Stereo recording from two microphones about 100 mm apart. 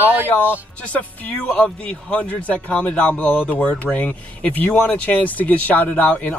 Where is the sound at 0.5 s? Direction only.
15° left (ahead or behind).